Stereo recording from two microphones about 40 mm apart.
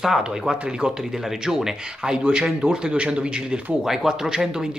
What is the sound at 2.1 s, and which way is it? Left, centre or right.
A man's voice, right.